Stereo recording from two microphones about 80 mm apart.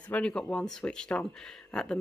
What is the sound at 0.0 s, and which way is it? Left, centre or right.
Speech, centre.